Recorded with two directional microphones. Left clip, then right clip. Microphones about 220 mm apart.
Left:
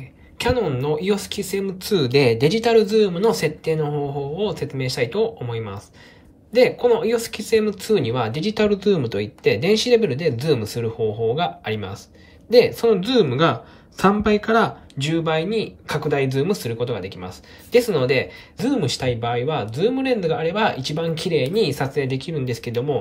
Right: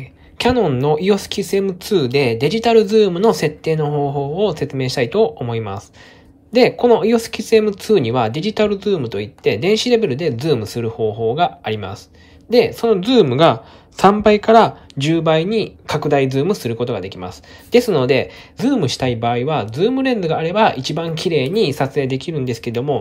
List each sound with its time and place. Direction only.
0.4 s speech: 15° right (ahead or behind)